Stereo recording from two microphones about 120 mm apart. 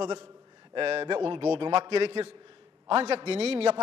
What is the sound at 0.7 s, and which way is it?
A man's voice, 50° right (ahead or behind).